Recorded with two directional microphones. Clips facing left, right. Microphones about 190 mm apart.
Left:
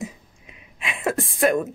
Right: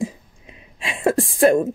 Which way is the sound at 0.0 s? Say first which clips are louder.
Right 7 dB; 30° right (ahead or behind).